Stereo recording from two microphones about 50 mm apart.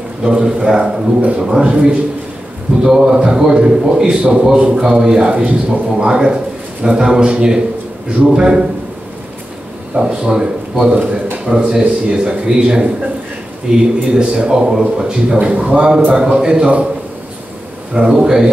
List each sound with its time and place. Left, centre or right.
0.2 s a man's voice: centre
9.9 s a man's voice: centre
10.9 s a man's voice: right
15.3 s a man's voice: right
16.1 s a man's voice: centre
17.9 s a man's voice: centre